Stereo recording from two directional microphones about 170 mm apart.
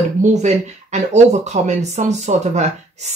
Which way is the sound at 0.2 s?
45° right (ahead or behind).